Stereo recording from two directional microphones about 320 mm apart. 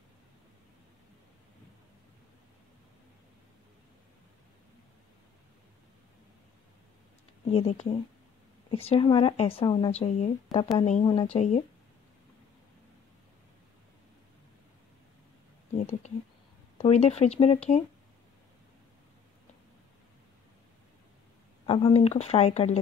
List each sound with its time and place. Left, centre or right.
7.4 s speech: centre
16.7 s speech: centre
21.6 s speech: centre